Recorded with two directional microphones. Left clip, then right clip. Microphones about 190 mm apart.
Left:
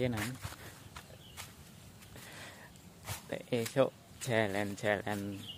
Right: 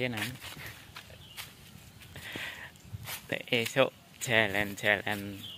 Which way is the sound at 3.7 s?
Centre (ahead or behind).